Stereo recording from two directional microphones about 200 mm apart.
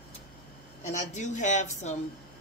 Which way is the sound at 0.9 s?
35° left (ahead or behind).